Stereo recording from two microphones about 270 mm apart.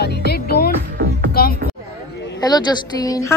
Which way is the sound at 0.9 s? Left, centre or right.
Right.